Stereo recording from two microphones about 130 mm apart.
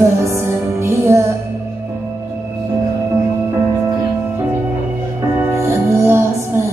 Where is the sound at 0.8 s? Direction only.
20° right (ahead or behind).